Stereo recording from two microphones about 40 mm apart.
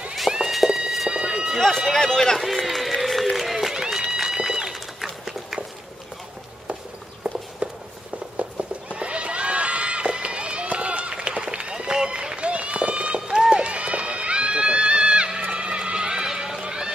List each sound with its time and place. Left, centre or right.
0.5 s horse: centre
1.1 s run: centre
1.9 s speech: centre
2.3 s run: centre
3.3 s a sound: centre
3.9 s run: centre
5.0 s horse: centre
7.2 s walk: right
7.6 s a sound: right
8.9 s run: right
15.5 s horse: right
16.6 s run: right